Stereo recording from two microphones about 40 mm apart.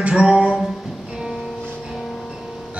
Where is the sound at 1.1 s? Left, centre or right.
Centre.